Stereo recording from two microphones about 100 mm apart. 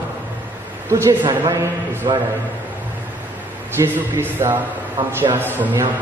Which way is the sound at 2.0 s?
40° right (ahead or behind).